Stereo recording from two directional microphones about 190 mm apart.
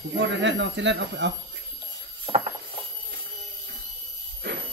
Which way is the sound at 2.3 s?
25° right (ahead or behind).